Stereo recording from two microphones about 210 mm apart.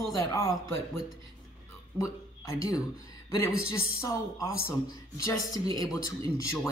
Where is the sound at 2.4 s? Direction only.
15° left (ahead or behind).